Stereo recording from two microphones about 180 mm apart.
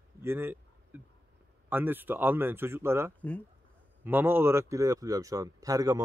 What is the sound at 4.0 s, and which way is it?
Speech, 10° right (ahead or behind).